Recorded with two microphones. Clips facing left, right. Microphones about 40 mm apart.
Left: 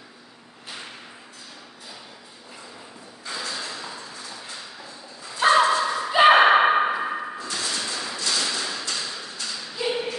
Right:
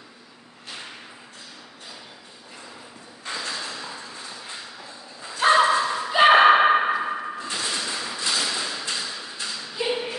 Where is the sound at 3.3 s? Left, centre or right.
Right.